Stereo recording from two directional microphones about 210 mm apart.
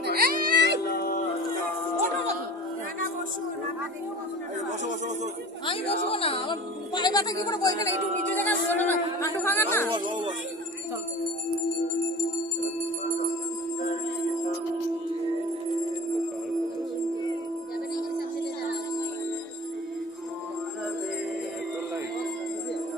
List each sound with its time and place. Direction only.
0.0 s music: 50° right (ahead or behind)
0.9 s music: 45° left (ahead or behind)
5.7 s speech: 25° left (ahead or behind)
8.1 s music: 35° right (ahead or behind)
8.5 s speech: 10° left (ahead or behind)
9.9 s speech: 20° right (ahead or behind)